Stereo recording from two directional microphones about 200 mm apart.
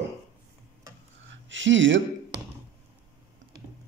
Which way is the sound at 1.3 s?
70° right (ahead or behind).